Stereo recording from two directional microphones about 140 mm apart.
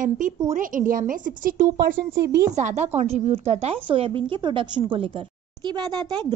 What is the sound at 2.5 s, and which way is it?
A woman's voice, 55° right (ahead or behind).